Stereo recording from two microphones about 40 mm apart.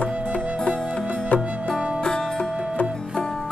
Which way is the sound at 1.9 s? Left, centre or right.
Centre.